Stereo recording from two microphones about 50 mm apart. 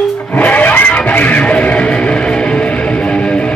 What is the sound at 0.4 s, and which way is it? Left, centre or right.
Music, left.